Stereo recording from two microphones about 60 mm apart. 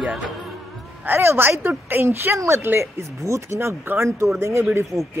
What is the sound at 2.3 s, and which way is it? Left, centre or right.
Speech, right.